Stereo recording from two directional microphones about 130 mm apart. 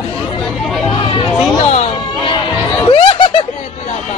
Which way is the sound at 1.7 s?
55° left (ahead or behind).